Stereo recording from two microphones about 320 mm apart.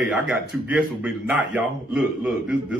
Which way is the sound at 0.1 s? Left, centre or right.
Centre.